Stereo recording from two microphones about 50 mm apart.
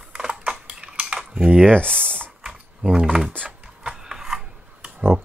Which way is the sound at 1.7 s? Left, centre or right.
Left.